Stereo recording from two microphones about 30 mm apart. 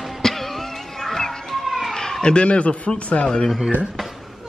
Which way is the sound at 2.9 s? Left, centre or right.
Left.